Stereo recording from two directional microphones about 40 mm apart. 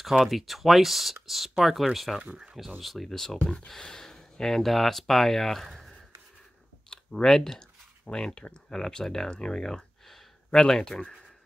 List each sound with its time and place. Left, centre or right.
0.0 s speech: centre
4.6 s speech: centre
6.9 s clicking: left
7.2 s speech: centre